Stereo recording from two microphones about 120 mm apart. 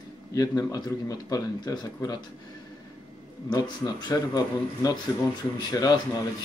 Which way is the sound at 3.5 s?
35° left (ahead or behind).